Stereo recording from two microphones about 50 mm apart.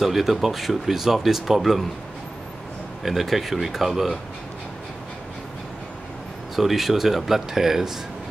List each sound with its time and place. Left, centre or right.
0.0 s speech: centre
3.0 s speech: centre
6.5 s speech: centre